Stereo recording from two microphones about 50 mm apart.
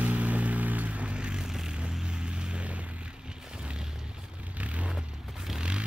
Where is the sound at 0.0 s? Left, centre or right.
Right.